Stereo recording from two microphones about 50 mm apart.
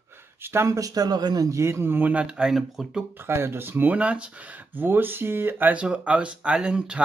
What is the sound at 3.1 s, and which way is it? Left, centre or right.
Speech, right.